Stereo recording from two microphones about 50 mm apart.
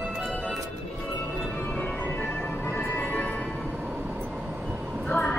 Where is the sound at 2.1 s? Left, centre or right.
Left.